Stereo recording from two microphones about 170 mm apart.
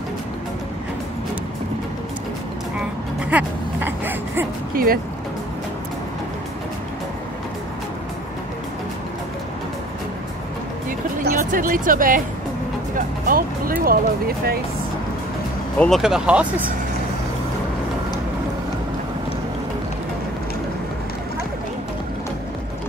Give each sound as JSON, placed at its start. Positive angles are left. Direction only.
{"t": 3.3, "sound": "a sound", "side_deg": -10}
{"t": 4.7, "sound": "speech", "side_deg": -60}
{"t": 11.2, "sound": "speech", "side_deg": -55}
{"t": 15.8, "sound": "speech", "side_deg": 0}